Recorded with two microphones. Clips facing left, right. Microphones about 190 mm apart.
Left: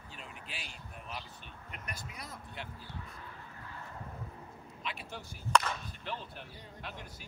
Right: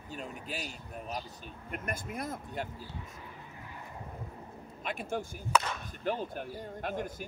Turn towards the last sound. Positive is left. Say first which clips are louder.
# right 11 dB
turn(degrees=-50)  # may be behind; listen again after turning